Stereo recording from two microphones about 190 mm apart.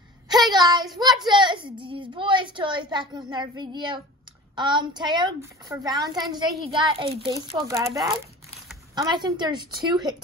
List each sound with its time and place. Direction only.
0.3 s a sound: 20° right (ahead or behind)
0.9 s a child's voice: 20° right (ahead or behind)
8.9 s a child's voice: 20° right (ahead or behind)